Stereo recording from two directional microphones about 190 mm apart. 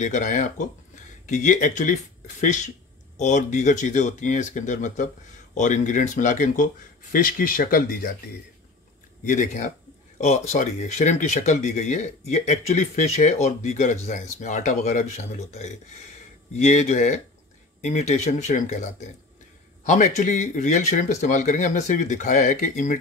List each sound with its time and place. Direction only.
0.0 s speech: 40° left (ahead or behind)
9.2 s speech: 40° left (ahead or behind)